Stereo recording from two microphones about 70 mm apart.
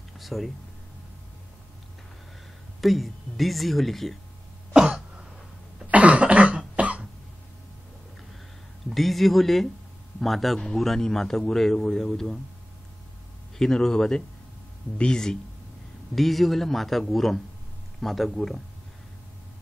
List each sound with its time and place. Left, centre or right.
0.2 s speech: centre
2.8 s a man's voice: centre
4.7 s throat clearing: centre
5.9 s cough: centre
8.9 s a man's voice: centre
13.6 s a man's voice: centre